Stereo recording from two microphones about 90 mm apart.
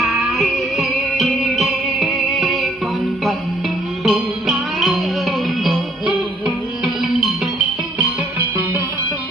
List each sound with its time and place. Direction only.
0.0 s music: centre (ahead or behind)
4.0 s music: centre (ahead or behind)
6.0 s music: 15° right (ahead or behind)
7.0 s music: centre (ahead or behind)